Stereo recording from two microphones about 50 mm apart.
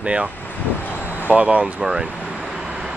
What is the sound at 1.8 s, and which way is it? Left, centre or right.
Speech, centre.